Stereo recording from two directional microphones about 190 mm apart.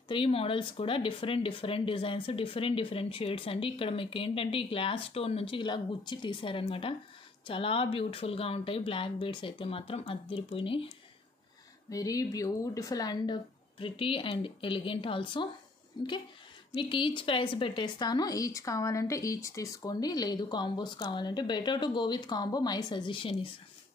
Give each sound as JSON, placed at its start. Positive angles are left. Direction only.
{"t": 0.1, "sound": "speech", "side_deg": 30}
{"t": 11.9, "sound": "speech", "side_deg": 20}